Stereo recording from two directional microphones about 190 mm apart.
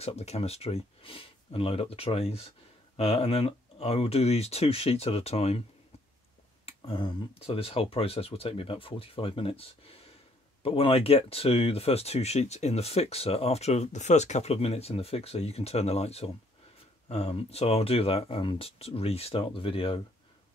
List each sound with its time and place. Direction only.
0.0 s speech: 35° left (ahead or behind)
6.6 s speech: 30° left (ahead or behind)